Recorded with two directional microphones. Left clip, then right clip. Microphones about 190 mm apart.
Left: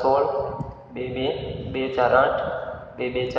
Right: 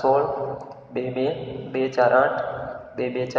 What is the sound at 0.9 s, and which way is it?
Speech, 45° right (ahead or behind).